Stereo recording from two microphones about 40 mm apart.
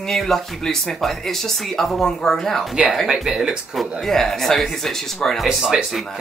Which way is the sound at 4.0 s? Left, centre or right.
Centre.